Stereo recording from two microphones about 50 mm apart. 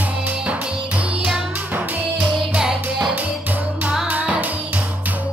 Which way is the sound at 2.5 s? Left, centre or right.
Centre.